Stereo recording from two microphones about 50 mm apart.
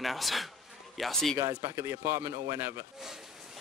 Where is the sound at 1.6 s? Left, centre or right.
Right.